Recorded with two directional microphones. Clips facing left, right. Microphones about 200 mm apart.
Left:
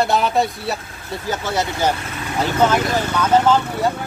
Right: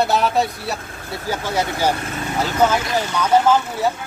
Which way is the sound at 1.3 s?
10° right (ahead or behind).